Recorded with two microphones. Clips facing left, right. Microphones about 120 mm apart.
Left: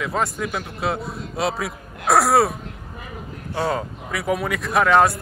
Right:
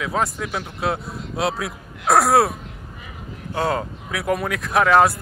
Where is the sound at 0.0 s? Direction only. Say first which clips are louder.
Even; centre (ahead or behind).